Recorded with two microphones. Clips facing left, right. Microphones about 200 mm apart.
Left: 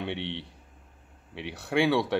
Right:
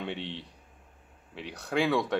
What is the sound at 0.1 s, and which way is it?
Speech, 65° left (ahead or behind).